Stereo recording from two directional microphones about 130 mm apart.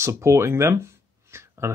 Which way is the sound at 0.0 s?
20° right (ahead or behind).